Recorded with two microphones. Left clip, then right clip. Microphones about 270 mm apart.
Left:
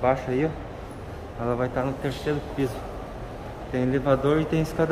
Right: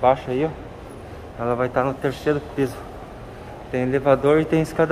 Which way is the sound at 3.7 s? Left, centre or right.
Centre.